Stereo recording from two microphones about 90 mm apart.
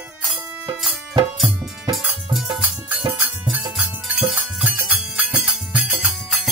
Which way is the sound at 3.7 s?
10° right (ahead or behind).